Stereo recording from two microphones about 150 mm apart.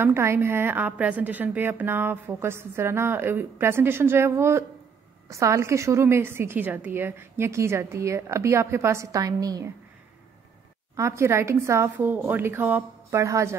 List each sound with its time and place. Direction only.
0.0 s a woman's voice: 15° right (ahead or behind)
11.0 s a woman's voice: 20° right (ahead or behind)